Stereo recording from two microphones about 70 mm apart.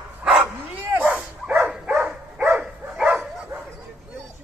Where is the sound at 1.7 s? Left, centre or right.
Centre.